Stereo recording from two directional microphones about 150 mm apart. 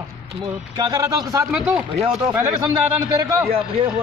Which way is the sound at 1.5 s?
10° right (ahead or behind).